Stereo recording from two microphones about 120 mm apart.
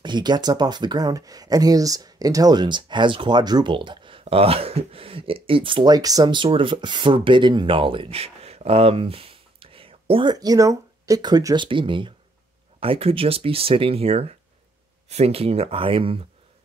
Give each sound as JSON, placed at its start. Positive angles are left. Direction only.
{"t": 0.0, "sound": "speech", "side_deg": -40}
{"t": 10.3, "sound": "speech", "side_deg": -30}